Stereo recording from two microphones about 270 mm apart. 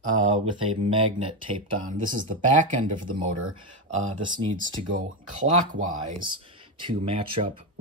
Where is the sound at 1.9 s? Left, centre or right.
Right.